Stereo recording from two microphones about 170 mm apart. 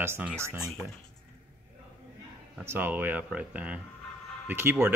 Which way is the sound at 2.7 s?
10° right (ahead or behind).